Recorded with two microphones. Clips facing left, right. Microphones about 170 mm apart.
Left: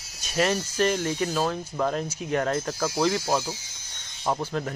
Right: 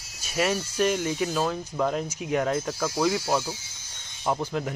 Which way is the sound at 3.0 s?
5° right (ahead or behind).